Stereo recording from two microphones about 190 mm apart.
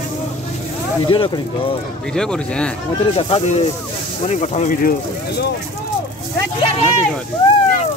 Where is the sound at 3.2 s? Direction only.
30° left (ahead or behind); by 5.4 s 45° left (ahead or behind).